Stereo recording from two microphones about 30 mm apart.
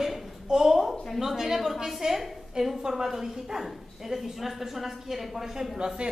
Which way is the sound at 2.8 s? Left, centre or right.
Centre.